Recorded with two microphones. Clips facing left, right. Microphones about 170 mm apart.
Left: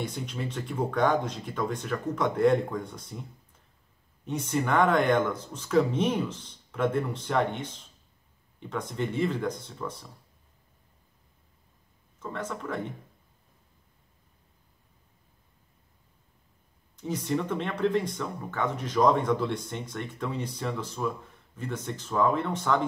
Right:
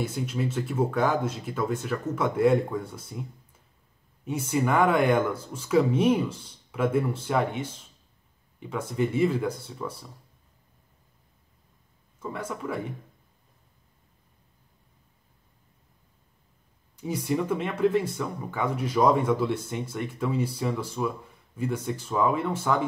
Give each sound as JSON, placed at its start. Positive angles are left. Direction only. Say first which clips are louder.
{"t": 0.0, "sound": "speech", "louder": "right 4 dB", "side_deg": -5}
{"t": 12.2, "sound": "speech", "louder": "right 1 dB", "side_deg": -10}
{"t": 16.9, "sound": "speech", "louder": "right 1 dB", "side_deg": -10}